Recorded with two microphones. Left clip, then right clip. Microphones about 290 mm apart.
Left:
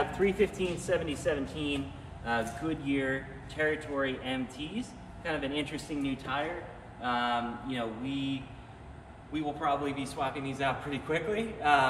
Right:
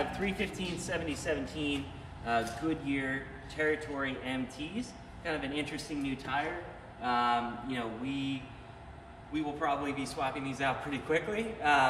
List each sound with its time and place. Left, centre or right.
0.2 s speech: centre